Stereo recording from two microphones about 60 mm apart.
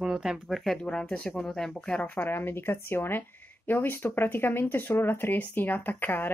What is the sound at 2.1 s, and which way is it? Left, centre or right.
Speech, left.